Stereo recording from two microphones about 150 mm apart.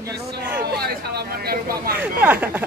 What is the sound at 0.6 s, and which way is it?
Speech, 90° right.